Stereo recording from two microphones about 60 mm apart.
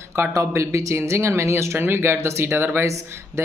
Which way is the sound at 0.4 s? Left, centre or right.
Right.